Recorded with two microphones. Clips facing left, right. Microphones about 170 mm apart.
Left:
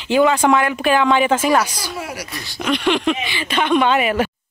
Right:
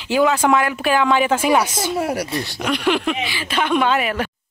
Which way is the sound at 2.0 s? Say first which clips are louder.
Right 8 dB; 55° right (ahead or behind).